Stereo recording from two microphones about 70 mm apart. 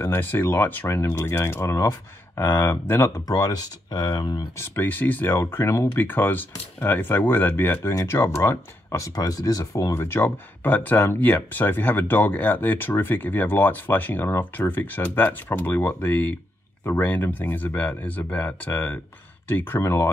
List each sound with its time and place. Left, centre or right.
0.0 s speech: left
0.8 s speech: left
2.4 s speech: left
3.3 s speech: left
4.6 s speech: left
6.0 s speech: left
9.1 s speech: left
9.9 s speech: left